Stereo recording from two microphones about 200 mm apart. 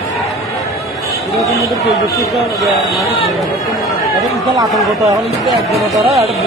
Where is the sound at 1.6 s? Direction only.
Centre (ahead or behind).